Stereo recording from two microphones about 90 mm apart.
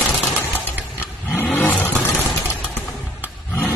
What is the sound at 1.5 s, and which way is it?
Vehicle, 20° left (ahead or behind).